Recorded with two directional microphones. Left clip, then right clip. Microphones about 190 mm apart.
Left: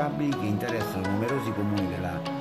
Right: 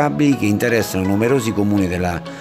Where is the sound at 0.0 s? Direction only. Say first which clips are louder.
Right 11 dB; 40° right (ahead or behind).